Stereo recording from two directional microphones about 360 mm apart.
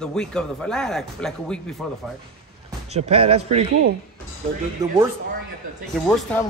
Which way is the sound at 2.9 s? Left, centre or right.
Centre.